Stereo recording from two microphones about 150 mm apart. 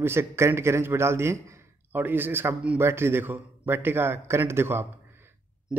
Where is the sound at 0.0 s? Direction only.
15° right (ahead or behind).